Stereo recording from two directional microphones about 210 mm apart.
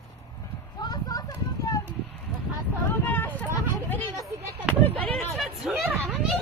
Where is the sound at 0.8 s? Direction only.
20° left (ahead or behind).